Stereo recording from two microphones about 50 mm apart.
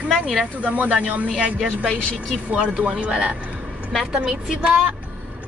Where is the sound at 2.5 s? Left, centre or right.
Right.